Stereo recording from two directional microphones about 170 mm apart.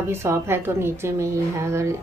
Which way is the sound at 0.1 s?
15° right (ahead or behind).